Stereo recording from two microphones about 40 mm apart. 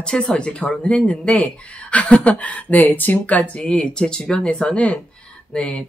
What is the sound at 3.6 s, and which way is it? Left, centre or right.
Speech, centre.